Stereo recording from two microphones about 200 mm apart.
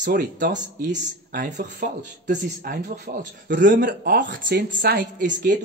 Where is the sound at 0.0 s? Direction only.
40° right (ahead or behind).